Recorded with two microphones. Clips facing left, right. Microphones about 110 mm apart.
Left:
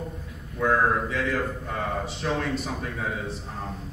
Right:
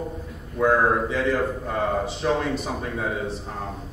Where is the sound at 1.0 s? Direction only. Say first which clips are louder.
Right 4 dB; centre (ahead or behind).